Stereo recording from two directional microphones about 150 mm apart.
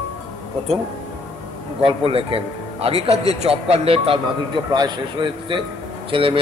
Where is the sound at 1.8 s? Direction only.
40° right (ahead or behind).